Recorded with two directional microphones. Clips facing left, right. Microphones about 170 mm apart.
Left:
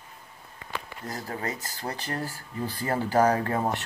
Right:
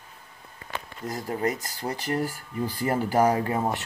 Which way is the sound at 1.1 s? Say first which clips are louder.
Right 6 dB; 20° right (ahead or behind).